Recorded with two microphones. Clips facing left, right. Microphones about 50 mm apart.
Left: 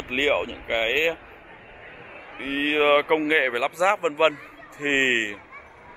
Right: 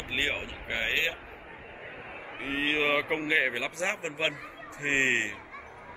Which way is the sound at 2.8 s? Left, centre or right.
Left.